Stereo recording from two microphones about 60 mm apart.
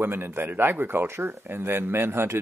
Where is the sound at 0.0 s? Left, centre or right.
Right.